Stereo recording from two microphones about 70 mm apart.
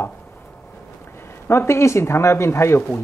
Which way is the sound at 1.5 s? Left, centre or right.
Left.